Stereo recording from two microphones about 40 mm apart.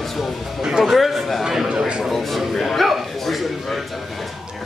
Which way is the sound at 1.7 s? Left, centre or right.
Centre.